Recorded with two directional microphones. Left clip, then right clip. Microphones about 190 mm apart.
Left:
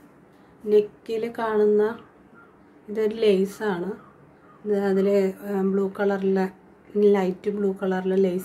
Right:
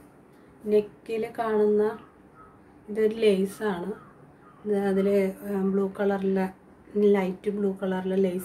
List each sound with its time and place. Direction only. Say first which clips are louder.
0.7 s a woman's voice: left 4 dB; 20° left (ahead or behind)